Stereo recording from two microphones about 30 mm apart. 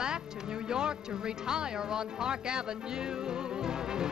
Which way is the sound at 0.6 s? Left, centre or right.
Right.